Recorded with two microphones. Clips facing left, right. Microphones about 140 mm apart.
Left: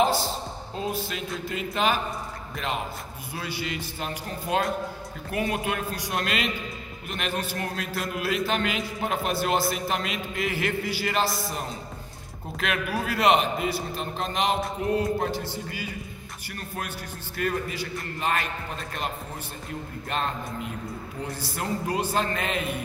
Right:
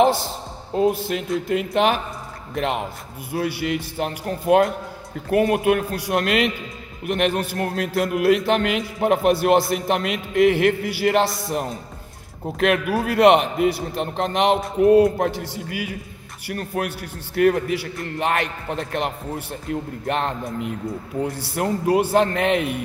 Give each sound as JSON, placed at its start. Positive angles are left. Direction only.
{"t": 1.0, "sound": "a man's voice", "side_deg": -60}
{"t": 5.3, "sound": "a man's voice", "side_deg": -60}
{"t": 16.4, "sound": "a man's voice", "side_deg": -65}